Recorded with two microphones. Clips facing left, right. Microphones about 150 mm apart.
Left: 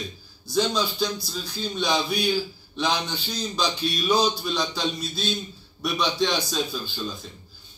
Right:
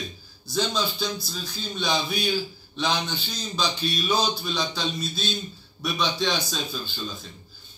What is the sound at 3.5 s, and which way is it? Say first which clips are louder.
A man's voice: even; 10° left (ahead or behind).